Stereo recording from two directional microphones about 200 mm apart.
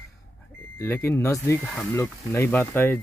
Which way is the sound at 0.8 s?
10° left (ahead or behind).